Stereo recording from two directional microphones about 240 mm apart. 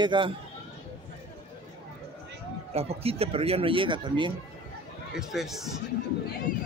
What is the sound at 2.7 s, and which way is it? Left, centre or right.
Speech, right.